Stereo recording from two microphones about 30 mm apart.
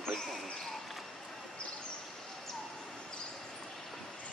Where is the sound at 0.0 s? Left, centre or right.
Centre.